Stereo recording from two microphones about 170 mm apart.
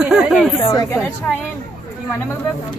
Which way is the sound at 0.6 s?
20° left (ahead or behind).